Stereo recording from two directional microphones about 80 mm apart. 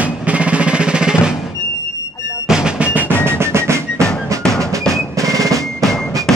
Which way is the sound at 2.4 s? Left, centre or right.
Centre.